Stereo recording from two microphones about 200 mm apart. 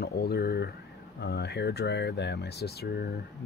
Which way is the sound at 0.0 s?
55° left (ahead or behind).